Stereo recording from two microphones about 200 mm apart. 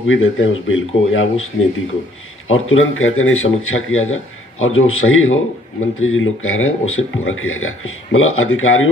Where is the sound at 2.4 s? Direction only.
90° left.